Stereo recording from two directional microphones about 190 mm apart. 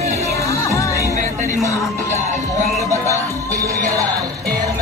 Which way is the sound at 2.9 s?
15° right (ahead or behind).